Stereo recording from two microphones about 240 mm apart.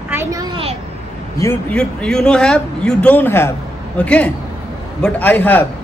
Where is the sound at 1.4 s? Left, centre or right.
Centre.